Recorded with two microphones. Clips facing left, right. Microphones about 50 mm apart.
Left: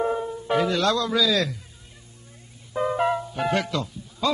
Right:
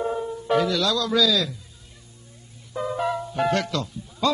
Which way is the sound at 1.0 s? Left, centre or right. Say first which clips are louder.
Right 2 dB; left.